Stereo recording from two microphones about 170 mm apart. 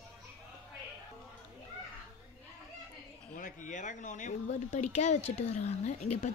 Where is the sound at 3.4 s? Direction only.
50° left (ahead or behind).